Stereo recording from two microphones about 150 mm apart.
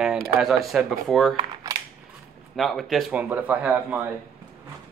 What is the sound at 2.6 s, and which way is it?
Speech, centre (ahead or behind).